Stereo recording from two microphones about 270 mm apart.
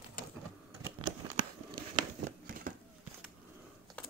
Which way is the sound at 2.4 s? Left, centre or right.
Right.